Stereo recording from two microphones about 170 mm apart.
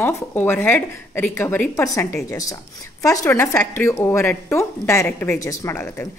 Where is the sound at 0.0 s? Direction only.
10° left (ahead or behind).